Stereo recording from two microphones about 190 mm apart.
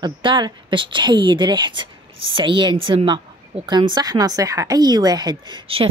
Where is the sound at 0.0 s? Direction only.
25° right (ahead or behind).